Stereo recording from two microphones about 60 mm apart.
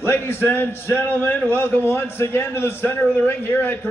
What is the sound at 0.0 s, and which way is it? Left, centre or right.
A man's voice, left.